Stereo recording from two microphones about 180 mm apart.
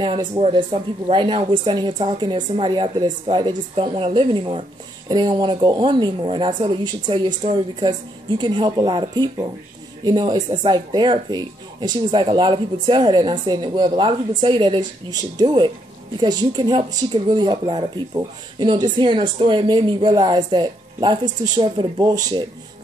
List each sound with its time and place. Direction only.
0.0 s a woman's voice: 25° right (ahead or behind)